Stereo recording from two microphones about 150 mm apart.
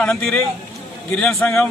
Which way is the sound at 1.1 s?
10° left (ahead or behind).